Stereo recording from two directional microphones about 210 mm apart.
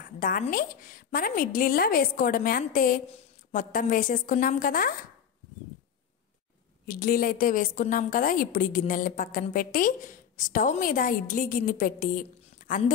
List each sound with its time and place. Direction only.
0.0 s a woman's voice: 40° left (ahead or behind)
6.9 s a woman's voice: 45° left (ahead or behind)